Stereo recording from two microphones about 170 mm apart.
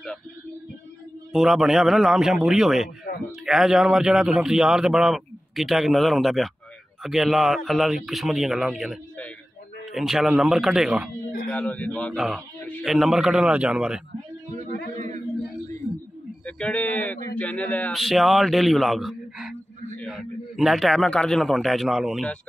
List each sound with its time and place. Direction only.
1.3 s a man's voice: 5° right (ahead or behind)
11.4 s speech: 10° left (ahead or behind)
12.8 s a man's voice: 5° right (ahead or behind)
14.5 s a sound: 45° right (ahead or behind)
16.4 s a man's voice: 5° left (ahead or behind)